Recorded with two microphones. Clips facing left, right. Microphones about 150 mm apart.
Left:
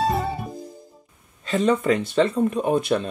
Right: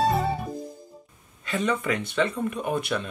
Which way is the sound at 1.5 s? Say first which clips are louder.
Left 6 dB; 30° left (ahead or behind).